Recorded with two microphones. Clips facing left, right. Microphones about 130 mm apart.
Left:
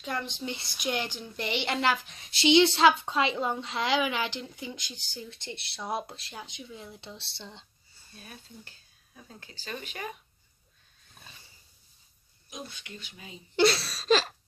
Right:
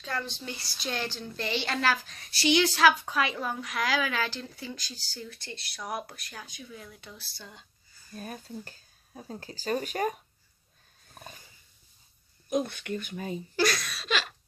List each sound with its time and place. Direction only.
0.0 s a woman's voice: 20° left (ahead or behind)
8.1 s speech: 40° right (ahead or behind)
11.1 s wild animals: 45° right (ahead or behind)
12.4 s speech: 55° right (ahead or behind)
13.6 s a sound: 30° left (ahead or behind)